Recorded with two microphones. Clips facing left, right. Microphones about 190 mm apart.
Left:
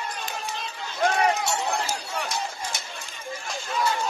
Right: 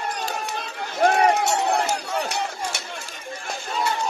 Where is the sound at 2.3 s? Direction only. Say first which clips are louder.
Right 3 dB; 70° right (ahead or behind).